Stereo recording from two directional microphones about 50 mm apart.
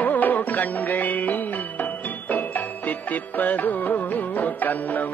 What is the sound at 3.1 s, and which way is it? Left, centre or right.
Music, left.